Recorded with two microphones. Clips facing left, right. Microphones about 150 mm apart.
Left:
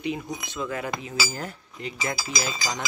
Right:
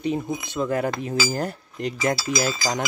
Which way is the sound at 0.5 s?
45° right (ahead or behind).